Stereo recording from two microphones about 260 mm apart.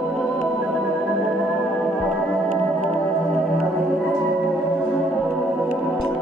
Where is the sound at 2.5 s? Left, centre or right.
Right.